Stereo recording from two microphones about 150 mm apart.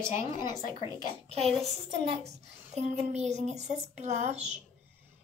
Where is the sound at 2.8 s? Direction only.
45° right (ahead or behind).